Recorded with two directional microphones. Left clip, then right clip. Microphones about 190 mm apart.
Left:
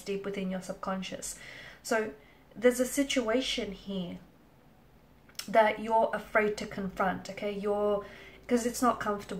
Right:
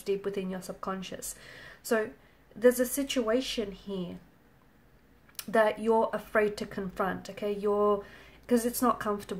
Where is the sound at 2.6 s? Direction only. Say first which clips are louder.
Right 2 dB; 45° right (ahead or behind).